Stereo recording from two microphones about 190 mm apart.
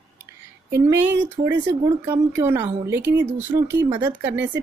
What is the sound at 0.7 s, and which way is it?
Speech, 10° right (ahead or behind).